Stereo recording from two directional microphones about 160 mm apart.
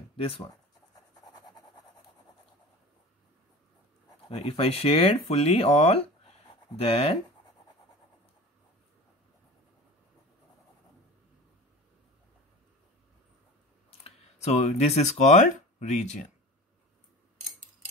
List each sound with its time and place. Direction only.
0.2 s speech: 35° left (ahead or behind)
4.3 s speech: 35° left (ahead or behind)
14.0 s speech: 40° left (ahead or behind)